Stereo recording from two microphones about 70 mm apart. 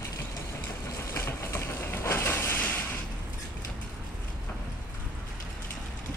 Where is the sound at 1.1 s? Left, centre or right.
Left.